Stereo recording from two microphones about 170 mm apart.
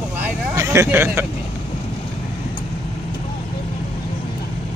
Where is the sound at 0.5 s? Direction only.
15° right (ahead or behind).